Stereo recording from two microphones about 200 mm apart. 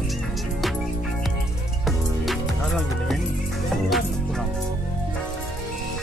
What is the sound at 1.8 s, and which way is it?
Music, centre (ahead or behind).